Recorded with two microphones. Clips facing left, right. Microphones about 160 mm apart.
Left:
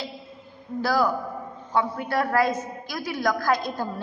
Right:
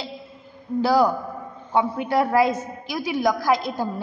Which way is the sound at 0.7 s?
20° right (ahead or behind).